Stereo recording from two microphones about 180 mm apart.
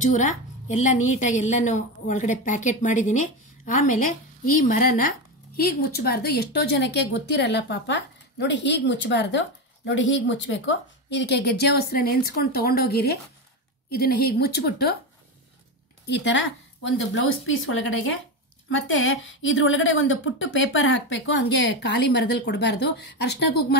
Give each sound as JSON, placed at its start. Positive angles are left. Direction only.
{"t": 0.0, "sound": "a woman's voice", "side_deg": 45}
{"t": 16.1, "sound": "a woman's voice", "side_deg": 90}